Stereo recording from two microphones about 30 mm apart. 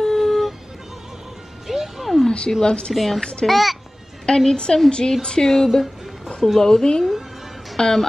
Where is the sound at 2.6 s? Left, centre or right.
Left.